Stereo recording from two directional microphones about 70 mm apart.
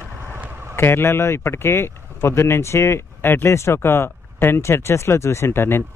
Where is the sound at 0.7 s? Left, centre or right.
Left.